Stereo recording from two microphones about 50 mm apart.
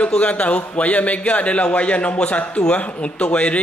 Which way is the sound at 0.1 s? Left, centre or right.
Left.